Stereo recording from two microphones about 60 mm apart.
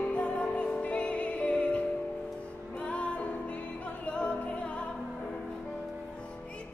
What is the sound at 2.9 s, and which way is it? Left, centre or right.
Music, left.